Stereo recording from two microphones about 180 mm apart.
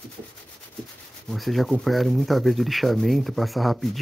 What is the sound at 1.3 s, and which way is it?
Speech, centre (ahead or behind).